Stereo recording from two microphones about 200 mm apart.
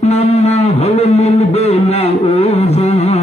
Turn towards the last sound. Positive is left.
turn(degrees=30)  # may be behind; listen again after turning